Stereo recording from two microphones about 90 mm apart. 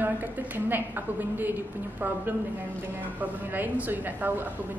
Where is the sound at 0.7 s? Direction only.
20° right (ahead or behind).